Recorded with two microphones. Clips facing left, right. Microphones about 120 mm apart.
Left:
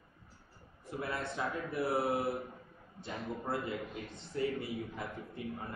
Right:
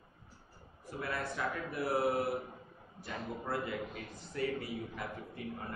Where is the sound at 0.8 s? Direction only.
25° left (ahead or behind).